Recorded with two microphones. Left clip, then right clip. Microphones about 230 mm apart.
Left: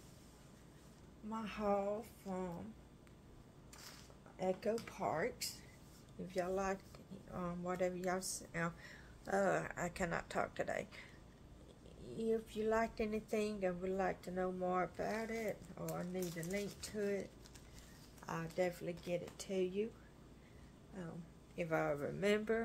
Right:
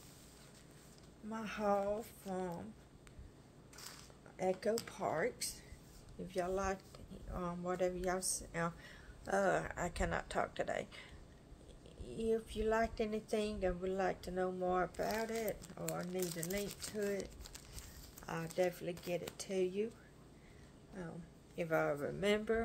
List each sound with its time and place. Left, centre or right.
1.3 s speech: centre
4.4 s speech: centre
12.1 s speech: centre
21.0 s speech: centre